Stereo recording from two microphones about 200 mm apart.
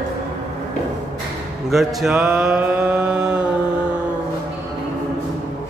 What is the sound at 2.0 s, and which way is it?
Mantra, 5° right (ahead or behind).